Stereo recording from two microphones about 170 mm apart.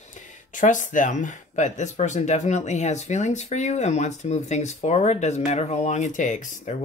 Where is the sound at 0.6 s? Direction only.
50° left (ahead or behind).